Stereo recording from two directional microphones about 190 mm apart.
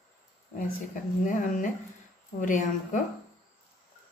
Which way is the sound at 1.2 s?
45° left (ahead or behind).